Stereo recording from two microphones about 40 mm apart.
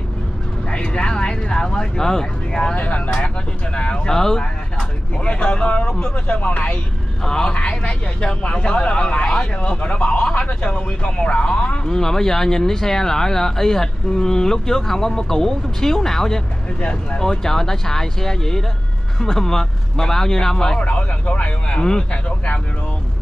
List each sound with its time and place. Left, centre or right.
0.7 s vehicle: left
2.7 s speech: left
4.1 s speech: centre
5.2 s speech: left
6.1 s speech: left
7.2 s speech: centre
11.9 s speech: centre
20.8 s speech: left
21.7 s speech: centre